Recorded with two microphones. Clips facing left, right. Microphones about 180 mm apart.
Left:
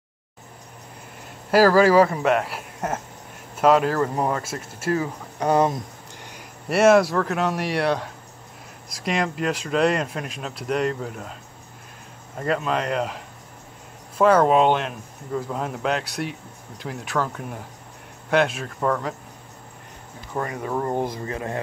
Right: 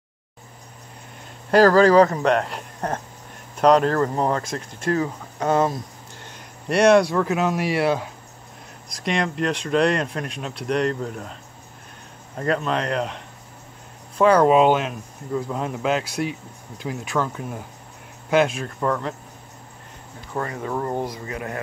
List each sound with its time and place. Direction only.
1.5 s speech: 10° left (ahead or behind)
12.4 s speech: 5° left (ahead or behind)
20.3 s speech: 20° left (ahead or behind)